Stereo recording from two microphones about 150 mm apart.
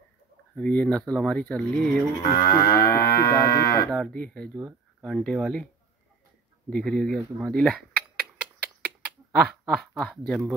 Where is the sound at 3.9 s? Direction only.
5° left (ahead or behind).